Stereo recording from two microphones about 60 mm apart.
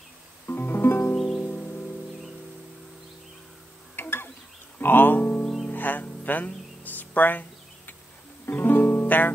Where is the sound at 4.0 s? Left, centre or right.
Left.